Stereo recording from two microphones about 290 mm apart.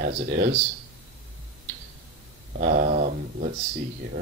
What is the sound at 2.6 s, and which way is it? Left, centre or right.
Speech, right.